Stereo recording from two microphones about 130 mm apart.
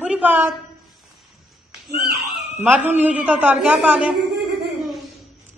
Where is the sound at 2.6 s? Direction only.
15° right (ahead or behind).